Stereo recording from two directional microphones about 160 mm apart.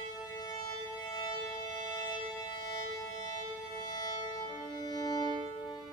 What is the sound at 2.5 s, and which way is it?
Music, 25° left (ahead or behind).